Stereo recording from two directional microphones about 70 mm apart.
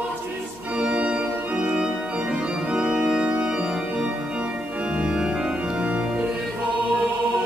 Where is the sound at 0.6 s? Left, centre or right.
Centre.